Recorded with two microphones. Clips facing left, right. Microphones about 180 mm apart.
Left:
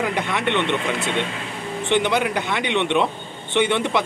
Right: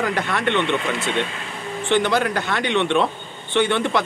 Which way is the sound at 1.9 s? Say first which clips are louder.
Right 1 dB; 20° left (ahead or behind).